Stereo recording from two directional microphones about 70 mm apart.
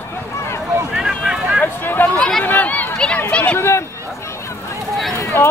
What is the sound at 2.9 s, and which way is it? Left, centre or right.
Run, centre.